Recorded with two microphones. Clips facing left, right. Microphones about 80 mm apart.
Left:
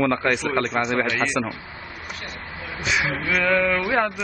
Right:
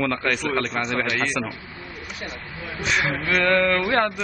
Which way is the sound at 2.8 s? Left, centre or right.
Centre.